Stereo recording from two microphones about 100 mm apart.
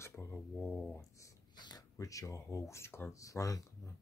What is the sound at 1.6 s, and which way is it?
Speech, 35° left (ahead or behind).